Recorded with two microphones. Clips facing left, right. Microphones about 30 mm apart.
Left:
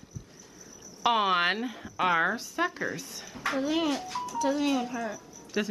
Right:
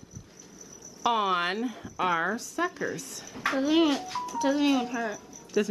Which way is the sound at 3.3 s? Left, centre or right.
Centre.